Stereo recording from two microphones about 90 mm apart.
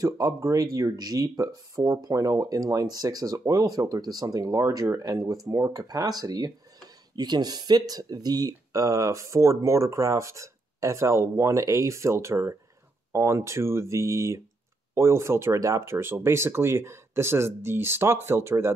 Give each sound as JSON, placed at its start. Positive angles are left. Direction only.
{"t": 0.0, "sound": "speech", "side_deg": -40}